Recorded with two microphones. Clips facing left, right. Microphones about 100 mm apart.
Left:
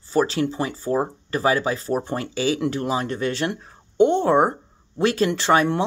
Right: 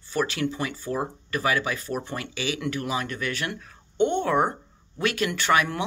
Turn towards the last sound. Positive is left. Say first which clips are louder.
# left 4 dB
turn(degrees=30)  # may be behind; listen again after turning